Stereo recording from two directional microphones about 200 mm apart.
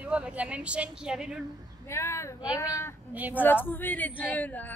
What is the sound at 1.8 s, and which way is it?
Speech, 15° left (ahead or behind).